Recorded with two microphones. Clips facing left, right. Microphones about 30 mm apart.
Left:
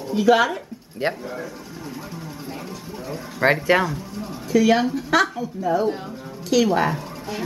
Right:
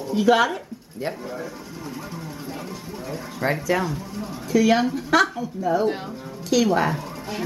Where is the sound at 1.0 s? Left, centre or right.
Left.